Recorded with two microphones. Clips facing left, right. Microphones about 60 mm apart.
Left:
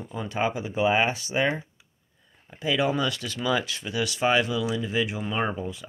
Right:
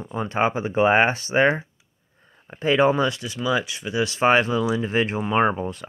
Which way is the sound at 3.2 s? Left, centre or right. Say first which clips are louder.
Right 2 dB; centre.